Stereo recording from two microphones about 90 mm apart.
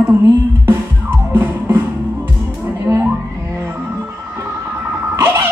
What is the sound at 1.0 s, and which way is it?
Music, 25° right (ahead or behind).